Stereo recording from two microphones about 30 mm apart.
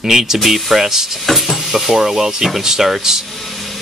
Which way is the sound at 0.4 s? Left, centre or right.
Centre.